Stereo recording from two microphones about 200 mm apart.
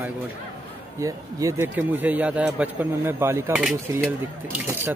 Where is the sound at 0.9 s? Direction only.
15° right (ahead or behind).